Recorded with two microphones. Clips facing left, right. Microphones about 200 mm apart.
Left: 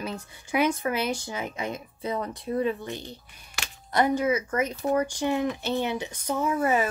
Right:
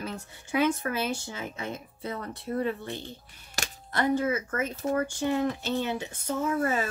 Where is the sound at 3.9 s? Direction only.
15° left (ahead or behind).